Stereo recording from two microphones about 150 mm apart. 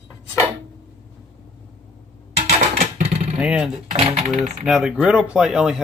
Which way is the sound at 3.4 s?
5° right (ahead or behind).